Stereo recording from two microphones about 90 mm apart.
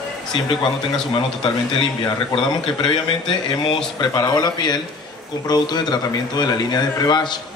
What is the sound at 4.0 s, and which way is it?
A man's voice, 50° left (ahead or behind).